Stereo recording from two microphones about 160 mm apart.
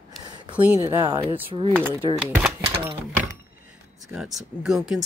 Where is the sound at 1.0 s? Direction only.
30° right (ahead or behind).